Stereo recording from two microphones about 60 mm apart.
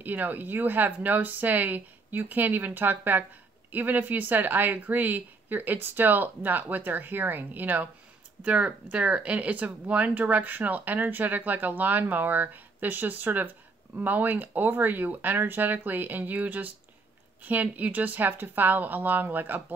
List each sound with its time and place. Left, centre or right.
0.0 s a woman's voice: right